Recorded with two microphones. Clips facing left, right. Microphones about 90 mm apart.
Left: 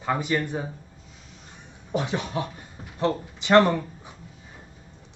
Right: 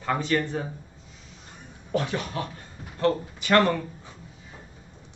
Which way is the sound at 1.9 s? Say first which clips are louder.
Even; 20° left (ahead or behind).